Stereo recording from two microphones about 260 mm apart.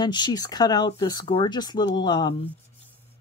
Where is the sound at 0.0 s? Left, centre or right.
Centre.